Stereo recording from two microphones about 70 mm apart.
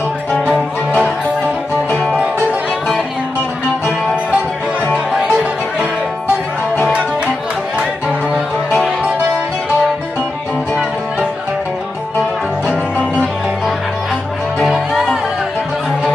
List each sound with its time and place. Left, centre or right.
4.9 s music: centre
14.6 s music: centre